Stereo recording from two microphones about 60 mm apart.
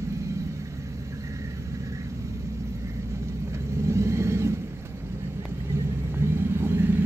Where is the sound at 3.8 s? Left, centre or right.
Right.